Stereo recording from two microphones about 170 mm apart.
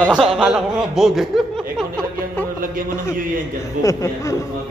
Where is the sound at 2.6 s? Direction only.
55° right (ahead or behind).